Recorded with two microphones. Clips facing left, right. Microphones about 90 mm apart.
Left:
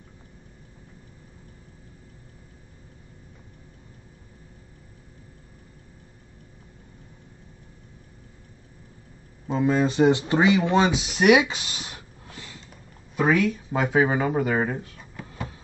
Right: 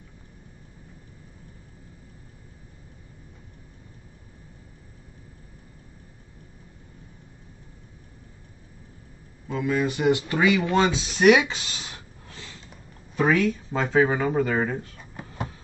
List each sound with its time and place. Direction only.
9.5 s speech: 30° left (ahead or behind); by 14.9 s 10° left (ahead or behind)